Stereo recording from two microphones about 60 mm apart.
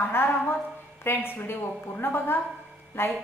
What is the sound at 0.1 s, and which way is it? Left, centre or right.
A woman's voice, left.